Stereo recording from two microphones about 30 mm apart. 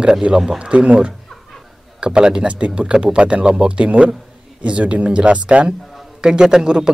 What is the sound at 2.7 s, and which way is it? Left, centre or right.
Speech, right.